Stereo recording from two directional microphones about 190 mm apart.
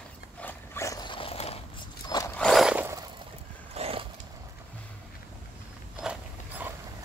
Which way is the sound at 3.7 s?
30° right (ahead or behind).